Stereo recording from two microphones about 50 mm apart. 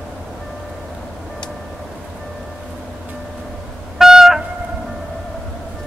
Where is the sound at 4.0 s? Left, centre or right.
Centre.